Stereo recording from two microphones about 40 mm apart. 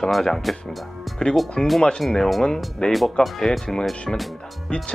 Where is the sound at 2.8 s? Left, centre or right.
Left.